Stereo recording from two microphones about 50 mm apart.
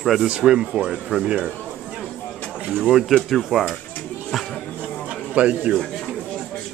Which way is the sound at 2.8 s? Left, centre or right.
Centre.